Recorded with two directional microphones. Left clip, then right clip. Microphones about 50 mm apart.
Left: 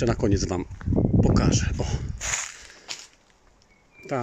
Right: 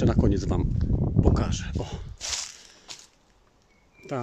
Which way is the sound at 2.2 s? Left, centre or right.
Left.